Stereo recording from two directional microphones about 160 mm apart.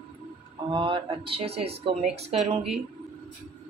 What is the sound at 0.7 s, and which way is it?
Speech, 30° right (ahead or behind).